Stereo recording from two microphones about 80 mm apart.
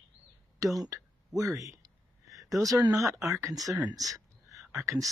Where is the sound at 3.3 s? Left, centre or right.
Right.